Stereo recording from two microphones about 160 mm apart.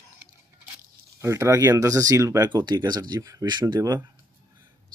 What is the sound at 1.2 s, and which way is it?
Speech, 20° right (ahead or behind).